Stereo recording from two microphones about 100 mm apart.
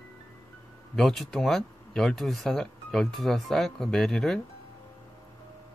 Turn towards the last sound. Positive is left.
turn(degrees=5)  # may be behind; listen again after turning